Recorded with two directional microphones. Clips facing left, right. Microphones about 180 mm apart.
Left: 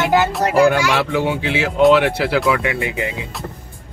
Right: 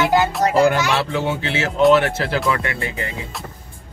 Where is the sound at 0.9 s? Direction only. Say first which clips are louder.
Left 2 dB; 15° left (ahead or behind).